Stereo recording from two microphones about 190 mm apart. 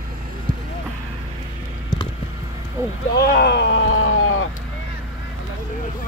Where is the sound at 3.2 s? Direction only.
55° left (ahead or behind); by 4.5 s 90° left.